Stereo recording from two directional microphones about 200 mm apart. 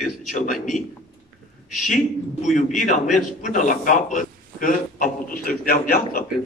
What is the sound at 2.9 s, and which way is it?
A man's voice, 40° left (ahead or behind).